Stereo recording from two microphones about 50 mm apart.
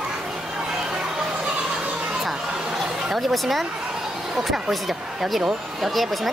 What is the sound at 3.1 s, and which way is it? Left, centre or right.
Speech, centre.